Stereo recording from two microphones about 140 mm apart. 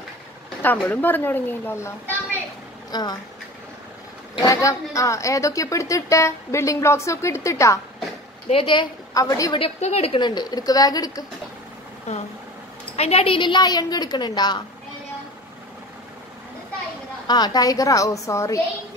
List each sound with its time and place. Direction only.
0.6 s speech: 15° left (ahead or behind)
2.9 s speech: 30° left (ahead or behind)
4.4 s speech: 25° left (ahead or behind)
8.5 s a woman's voice: 40° left (ahead or behind)
9.1 s speech: 25° left (ahead or behind)
9.6 s a woman's voice: 50° left (ahead or behind)
10.2 s speech: 30° left (ahead or behind)
12.1 s a woman's voice: 55° left (ahead or behind); by 14.6 s 30° left (ahead or behind)
17.3 s speech: 30° left (ahead or behind)